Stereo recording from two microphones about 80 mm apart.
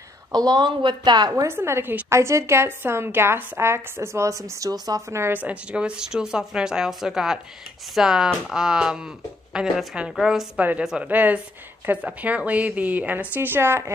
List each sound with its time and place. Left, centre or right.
0.3 s speech: right
1.3 s speech: right
5.1 s speech: right
5.4 s a woman's voice: centre
11.1 s speech: right